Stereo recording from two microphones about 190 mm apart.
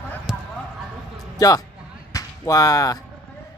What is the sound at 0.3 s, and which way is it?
Basketball bounce, 5° right (ahead or behind).